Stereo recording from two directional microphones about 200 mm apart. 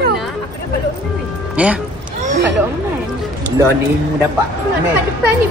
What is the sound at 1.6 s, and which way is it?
Speech, 10° right (ahead or behind).